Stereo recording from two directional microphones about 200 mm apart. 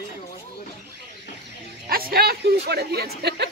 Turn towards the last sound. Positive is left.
turn(degrees=-55)  # may be behind; listen again after turning